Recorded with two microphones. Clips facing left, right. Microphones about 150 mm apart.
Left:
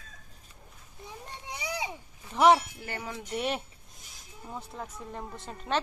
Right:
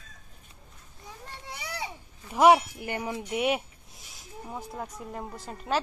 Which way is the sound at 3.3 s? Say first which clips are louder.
Right 4 dB; 10° right (ahead or behind).